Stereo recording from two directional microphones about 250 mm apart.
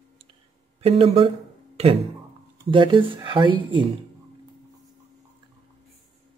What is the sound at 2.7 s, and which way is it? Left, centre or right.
Speech, centre.